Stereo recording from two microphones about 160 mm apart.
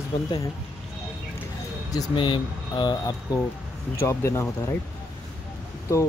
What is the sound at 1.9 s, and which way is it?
Speech, 30° left (ahead or behind).